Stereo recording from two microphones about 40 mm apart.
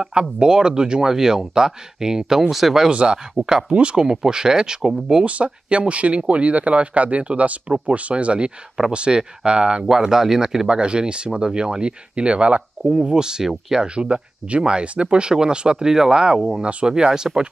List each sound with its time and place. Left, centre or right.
0.1 s speech: right; by 2.9 s centre
2.9 s speech: right
3.3 s speech: centre
3.7 s speech: right
5.2 s speech: right
9.8 s speech: centre
10.8 s speech: right
13.0 s speech: centre
13.9 s speech: right
16.3 s speech: centre
16.6 s speech: right